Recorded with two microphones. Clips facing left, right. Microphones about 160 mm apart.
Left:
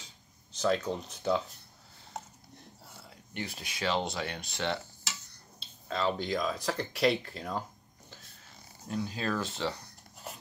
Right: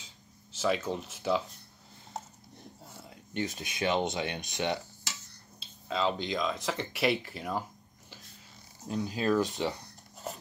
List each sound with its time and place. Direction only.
0.6 s speech: 5° right (ahead or behind)
3.3 s speech: 20° right (ahead or behind)
5.6 s speech: centre (ahead or behind)
8.8 s speech: 15° right (ahead or behind)